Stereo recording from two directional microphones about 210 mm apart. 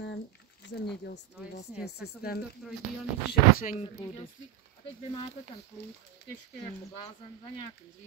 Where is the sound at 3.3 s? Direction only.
40° left (ahead or behind).